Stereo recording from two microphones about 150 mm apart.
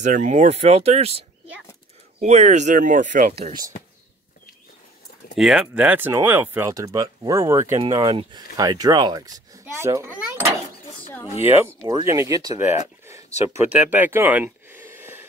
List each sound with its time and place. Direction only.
0.0 s speech: 55° right (ahead or behind)
5.3 s a child's voice: centre (ahead or behind)
11.4 s a child's voice: 15° right (ahead or behind)
13.0 s a sound: 20° right (ahead or behind)